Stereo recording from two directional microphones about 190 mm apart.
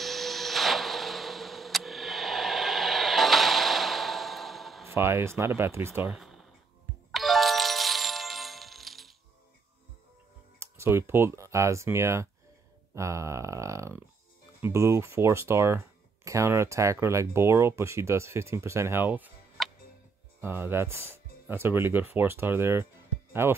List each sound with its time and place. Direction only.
0.0 s printer: centre (ahead or behind)
4.8 s speech: 15° right (ahead or behind)
6.1 s a sound: centre (ahead or behind)
7.1 s music: centre (ahead or behind)
10.6 s speech: 15° right (ahead or behind)
19.6 s tick: centre (ahead or behind)
20.3 s speech: 10° right (ahead or behind)